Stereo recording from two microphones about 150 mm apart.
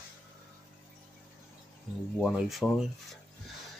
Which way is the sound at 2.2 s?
Centre (ahead or behind).